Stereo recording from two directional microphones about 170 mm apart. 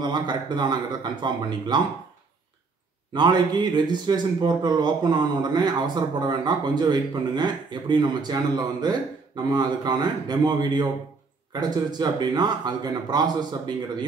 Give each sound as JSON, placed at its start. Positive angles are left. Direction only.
{"t": 0.0, "sound": "a man's voice", "side_deg": -25}
{"t": 3.2, "sound": "a man's voice", "side_deg": -25}